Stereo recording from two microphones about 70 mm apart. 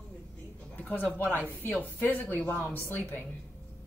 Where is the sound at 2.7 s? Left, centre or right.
Left.